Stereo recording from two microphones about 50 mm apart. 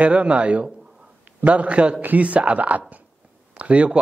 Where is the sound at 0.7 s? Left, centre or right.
Centre.